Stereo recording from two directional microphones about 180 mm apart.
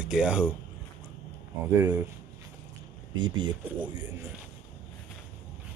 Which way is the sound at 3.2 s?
25° right (ahead or behind).